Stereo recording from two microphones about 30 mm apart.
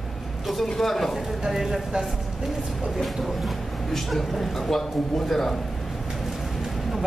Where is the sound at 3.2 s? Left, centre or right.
Centre.